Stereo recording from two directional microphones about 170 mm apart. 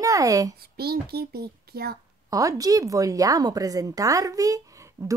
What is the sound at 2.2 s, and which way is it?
Speech, 20° right (ahead or behind).